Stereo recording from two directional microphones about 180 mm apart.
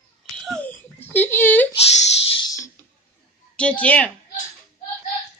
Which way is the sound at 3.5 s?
5° left (ahead or behind).